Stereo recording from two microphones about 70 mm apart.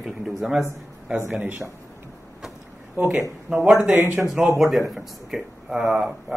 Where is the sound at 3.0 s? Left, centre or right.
Right.